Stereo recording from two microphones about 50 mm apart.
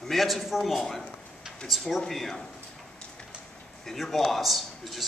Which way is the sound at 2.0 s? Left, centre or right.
Centre.